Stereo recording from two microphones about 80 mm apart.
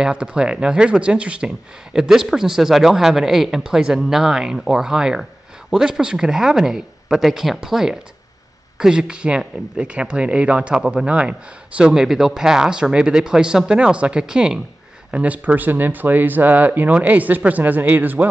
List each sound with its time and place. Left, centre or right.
0.0 s speech: centre